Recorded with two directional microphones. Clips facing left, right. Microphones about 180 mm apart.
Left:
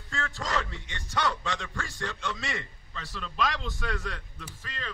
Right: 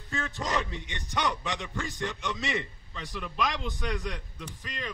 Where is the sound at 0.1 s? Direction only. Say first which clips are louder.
Right 1 dB; 20° right (ahead or behind).